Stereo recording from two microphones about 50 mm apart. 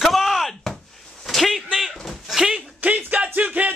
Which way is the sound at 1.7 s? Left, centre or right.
Centre.